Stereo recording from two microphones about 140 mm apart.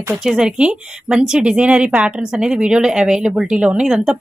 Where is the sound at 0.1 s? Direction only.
5° right (ahead or behind).